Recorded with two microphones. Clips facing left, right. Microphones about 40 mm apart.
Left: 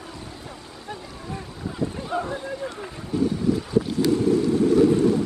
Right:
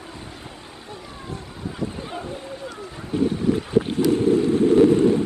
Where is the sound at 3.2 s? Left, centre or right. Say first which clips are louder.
Right 1 dB; right.